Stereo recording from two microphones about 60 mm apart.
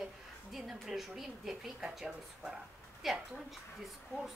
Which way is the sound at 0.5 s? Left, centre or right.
Centre.